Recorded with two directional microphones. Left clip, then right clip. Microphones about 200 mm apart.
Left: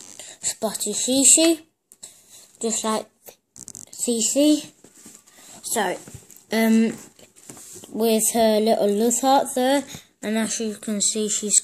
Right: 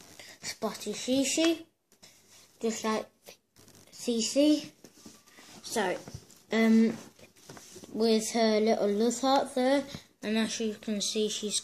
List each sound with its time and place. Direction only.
0.2 s a sound: 40° left (ahead or behind)
1.1 s speech: 50° left (ahead or behind)
2.6 s speech: 40° left (ahead or behind)
4.4 s speech: 40° left (ahead or behind)
5.7 s speech: 35° left (ahead or behind); by 11.6 s 55° left (ahead or behind)